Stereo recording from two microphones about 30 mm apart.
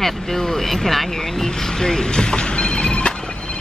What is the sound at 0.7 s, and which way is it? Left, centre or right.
Speech, centre.